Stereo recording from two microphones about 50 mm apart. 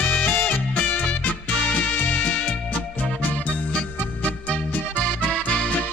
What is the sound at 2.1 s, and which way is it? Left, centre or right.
Music, left.